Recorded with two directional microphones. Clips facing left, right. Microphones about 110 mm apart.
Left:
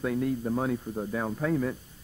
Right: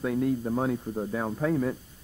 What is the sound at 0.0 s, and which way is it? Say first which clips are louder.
A man's voice: right 2 dB; 15° right (ahead or behind).